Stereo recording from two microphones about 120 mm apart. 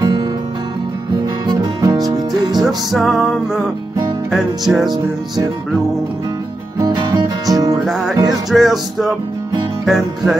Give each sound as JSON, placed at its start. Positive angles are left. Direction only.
{"t": 0.0, "sound": "music", "side_deg": -35}
{"t": 1.5, "sound": "music", "side_deg": -35}
{"t": 2.6, "sound": "music", "side_deg": 0}
{"t": 6.8, "sound": "music", "side_deg": -35}
{"t": 7.8, "sound": "music", "side_deg": -5}